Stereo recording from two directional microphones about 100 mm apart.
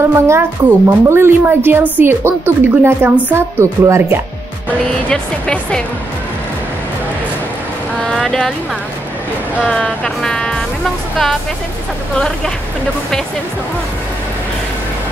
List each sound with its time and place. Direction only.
0.1 s speech: 25° right (ahead or behind)
5.1 s speech: 10° left (ahead or behind)
8.0 s a sound: 5° left (ahead or behind)
9.7 s music: 5° left (ahead or behind)